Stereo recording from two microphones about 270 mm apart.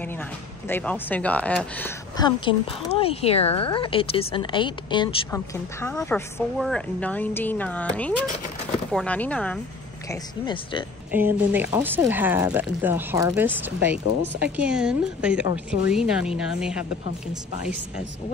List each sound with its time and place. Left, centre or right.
0.7 s speech: centre
2.1 s a woman's voice: centre
10.4 s a woman's voice: centre
11.1 s speech: centre